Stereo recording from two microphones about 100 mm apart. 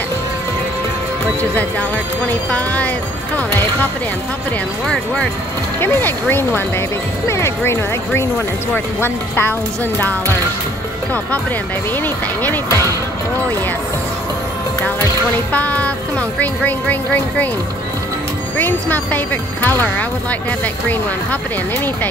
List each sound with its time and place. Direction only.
1.5 s speech: 15° left (ahead or behind)
4.8 s speech: 5° left (ahead or behind)
5.8 s speech: 20° left (ahead or behind)
11.9 s speech: 20° left (ahead or behind)
15.5 s speech: 15° left (ahead or behind)
18.6 s speech: 20° left (ahead or behind)